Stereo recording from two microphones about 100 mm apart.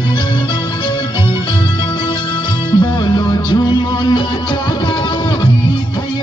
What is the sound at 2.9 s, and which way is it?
Music, 45° left (ahead or behind).